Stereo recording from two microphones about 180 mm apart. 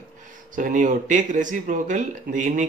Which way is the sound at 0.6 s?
45° right (ahead or behind).